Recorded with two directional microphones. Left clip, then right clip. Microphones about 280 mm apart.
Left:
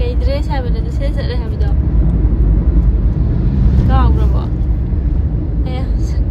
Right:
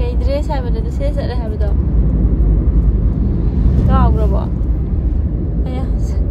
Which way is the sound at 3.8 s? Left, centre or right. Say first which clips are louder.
Right 2 dB; centre.